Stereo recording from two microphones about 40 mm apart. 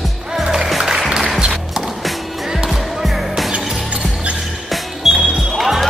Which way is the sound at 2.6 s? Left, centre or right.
Centre.